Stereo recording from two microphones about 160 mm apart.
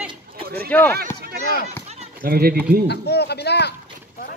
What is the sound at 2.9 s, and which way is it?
Speech, 90° left.